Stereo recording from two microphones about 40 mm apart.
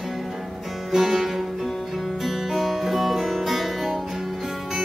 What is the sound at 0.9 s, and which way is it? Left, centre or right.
Music, centre.